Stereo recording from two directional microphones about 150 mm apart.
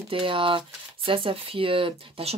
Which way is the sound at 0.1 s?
35° right (ahead or behind).